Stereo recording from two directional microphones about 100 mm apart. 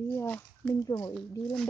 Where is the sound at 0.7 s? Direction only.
35° left (ahead or behind).